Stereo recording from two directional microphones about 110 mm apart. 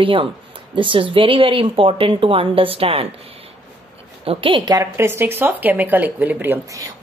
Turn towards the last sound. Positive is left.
turn(degrees=-15)  # may be behind; listen again after turning